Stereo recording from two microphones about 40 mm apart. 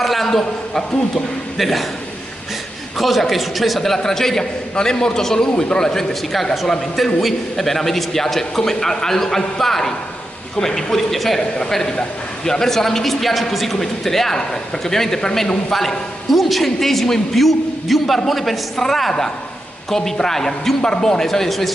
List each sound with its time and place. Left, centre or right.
0.0 s a sound: centre
0.3 s a man's voice: centre
1.6 s a man's voice: centre
3.0 s a man's voice: centre
6.3 s a man's voice: centre
11.7 s a man's voice: centre
15.7 s a man's voice: centre